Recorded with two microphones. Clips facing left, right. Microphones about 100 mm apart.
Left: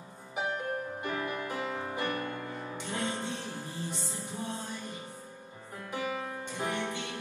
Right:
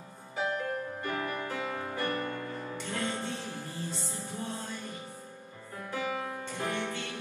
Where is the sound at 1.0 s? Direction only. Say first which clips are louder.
Right 1 dB; 20° left (ahead or behind).